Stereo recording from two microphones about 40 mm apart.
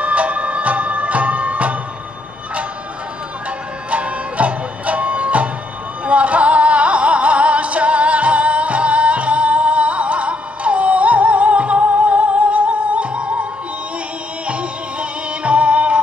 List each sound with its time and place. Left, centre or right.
0.0 s music: right
3.9 s music: right
14.5 s music: right